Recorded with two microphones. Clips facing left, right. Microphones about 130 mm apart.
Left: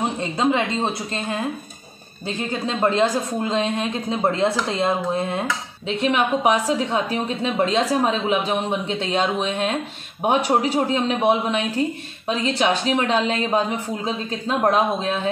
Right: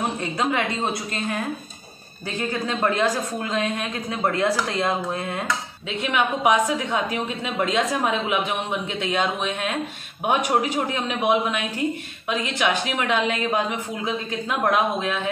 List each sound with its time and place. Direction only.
0.0 s a woman's voice: 25° left (ahead or behind)